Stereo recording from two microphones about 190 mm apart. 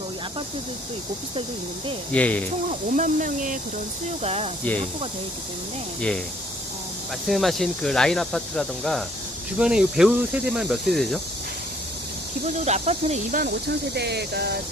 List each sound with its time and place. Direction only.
2.1 s speech: 5° left (ahead or behind)
3.0 s speech: 45° right (ahead or behind)
4.2 s speech: 35° right (ahead or behind)
5.9 s speech: 5° left (ahead or behind)
7.2 s speech: centre (ahead or behind)
12.6 s speech: 35° right (ahead or behind); by 14.6 s 60° right (ahead or behind)